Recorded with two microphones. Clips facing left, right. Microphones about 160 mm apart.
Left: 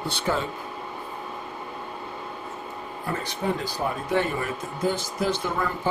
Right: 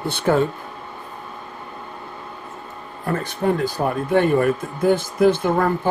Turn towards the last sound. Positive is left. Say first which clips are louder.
# right 9 dB
turn(degrees=-55)  # may be behind; listen again after turning